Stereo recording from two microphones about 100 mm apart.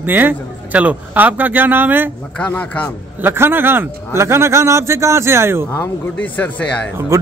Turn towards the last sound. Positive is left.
turn(degrees=15)  # may be behind; listen again after turning